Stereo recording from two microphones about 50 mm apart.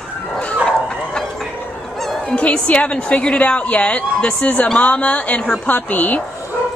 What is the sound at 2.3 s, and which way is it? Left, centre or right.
A woman's voice, left.